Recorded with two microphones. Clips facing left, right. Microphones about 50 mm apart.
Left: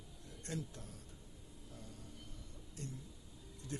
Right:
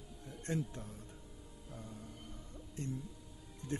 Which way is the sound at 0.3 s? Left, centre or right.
Right.